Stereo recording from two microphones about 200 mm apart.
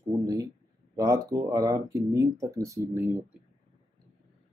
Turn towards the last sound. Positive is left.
turn(degrees=-15)  # may be behind; listen again after turning